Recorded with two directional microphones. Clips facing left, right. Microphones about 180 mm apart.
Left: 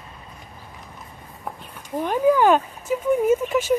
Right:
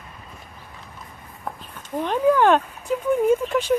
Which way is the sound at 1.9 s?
5° left (ahead or behind).